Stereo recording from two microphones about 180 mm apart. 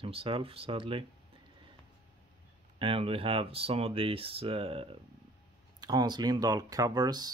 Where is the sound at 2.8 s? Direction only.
30° right (ahead or behind).